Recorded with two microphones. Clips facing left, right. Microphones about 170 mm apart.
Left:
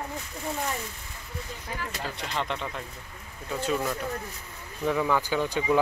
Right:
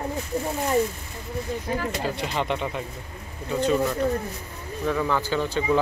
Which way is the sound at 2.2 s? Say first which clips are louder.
Right 2 dB; 5° right (ahead or behind).